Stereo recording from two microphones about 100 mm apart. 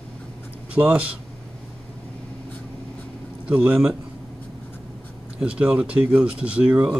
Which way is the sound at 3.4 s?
10° right (ahead or behind).